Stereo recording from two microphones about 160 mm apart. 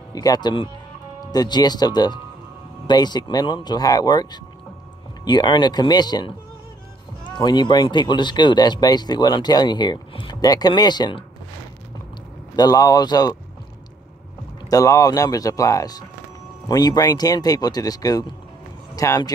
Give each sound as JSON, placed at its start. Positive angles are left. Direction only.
{"t": 0.1, "sound": "speech", "side_deg": 25}
{"t": 12.5, "sound": "speech", "side_deg": 25}
{"t": 14.7, "sound": "speech", "side_deg": 20}